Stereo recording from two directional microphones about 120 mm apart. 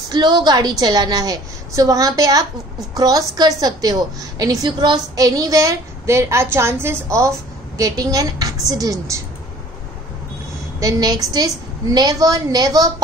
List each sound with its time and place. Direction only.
0.1 s a woman's voice: 35° right (ahead or behind)
10.8 s a woman's voice: 30° right (ahead or behind)